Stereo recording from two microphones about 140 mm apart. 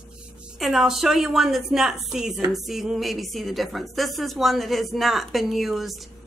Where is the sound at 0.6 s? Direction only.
Centre (ahead or behind).